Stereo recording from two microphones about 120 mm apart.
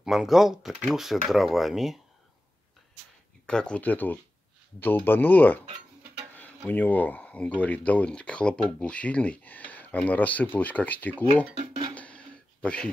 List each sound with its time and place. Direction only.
0.0 s speech: 5° right (ahead or behind)
3.4 s speech: 10° left (ahead or behind)
11.9 s a sound: 10° left (ahead or behind)